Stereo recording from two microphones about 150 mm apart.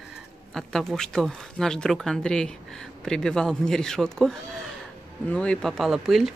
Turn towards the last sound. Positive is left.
turn(degrees=0)  # may be behind; listen again after turning